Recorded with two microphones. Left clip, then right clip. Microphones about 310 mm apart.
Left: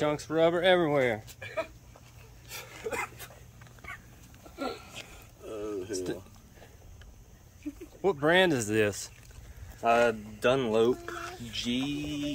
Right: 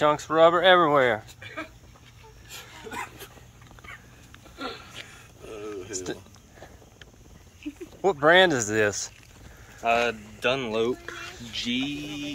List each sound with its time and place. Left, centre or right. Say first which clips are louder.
0.0 s speech: right 7 dB; centre
1.4 s speech: left 2 dB; left
4.6 s a sound: right 1 dB; left
5.9 s speech: right 1 dB; centre
8.0 s speech: right 6 dB; centre
9.8 s speech: right 1 dB; left